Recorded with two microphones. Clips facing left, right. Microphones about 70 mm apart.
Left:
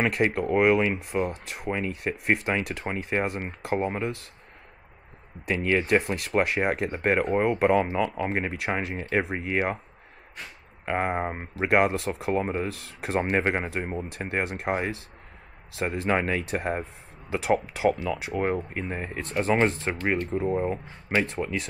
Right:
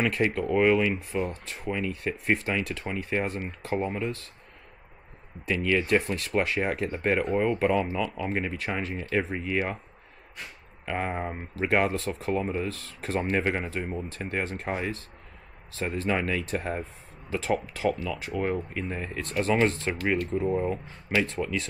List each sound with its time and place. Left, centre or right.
0.1 s speech: centre
5.6 s speech: left
9.2 s speech: centre
9.5 s speech: left
10.9 s speech: left
15.7 s speech: centre
16.1 s speech: left
18.3 s speech: left